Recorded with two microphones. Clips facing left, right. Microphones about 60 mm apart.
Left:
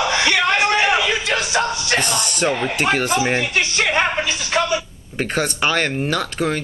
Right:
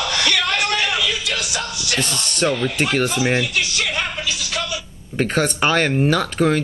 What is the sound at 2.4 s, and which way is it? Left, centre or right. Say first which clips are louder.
Speech: right 1 dB; left.